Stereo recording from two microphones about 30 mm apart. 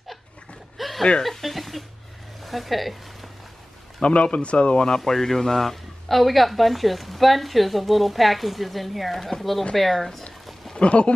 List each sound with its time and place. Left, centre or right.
0.7 s a sound: centre
1.2 s a woman's voice: centre
4.0 s speech: left
4.8 s speech: left
5.1 s a woman's voice: centre
10.8 s speech: left